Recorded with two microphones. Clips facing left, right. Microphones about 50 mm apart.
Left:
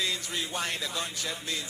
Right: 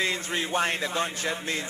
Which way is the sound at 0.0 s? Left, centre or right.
Right.